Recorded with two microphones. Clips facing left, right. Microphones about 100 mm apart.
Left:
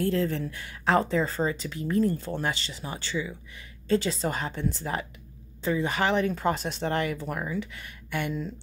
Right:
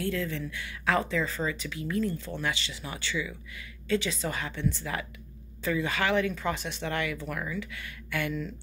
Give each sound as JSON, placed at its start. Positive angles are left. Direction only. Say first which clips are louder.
{"t": 0.0, "sound": "speech", "louder": "left 5 dB", "side_deg": 35}